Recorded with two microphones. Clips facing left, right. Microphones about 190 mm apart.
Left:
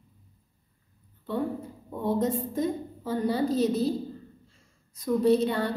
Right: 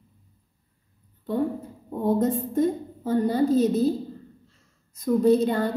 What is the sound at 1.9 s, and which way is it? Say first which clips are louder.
A woman's voice: right 4 dB; 45° right (ahead or behind).